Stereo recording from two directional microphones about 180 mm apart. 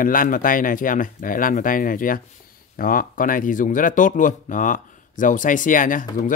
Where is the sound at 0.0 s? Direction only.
50° left (ahead or behind).